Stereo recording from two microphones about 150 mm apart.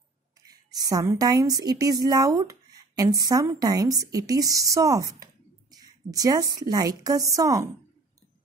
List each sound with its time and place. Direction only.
0.5 s a woman's voice: 25° right (ahead or behind)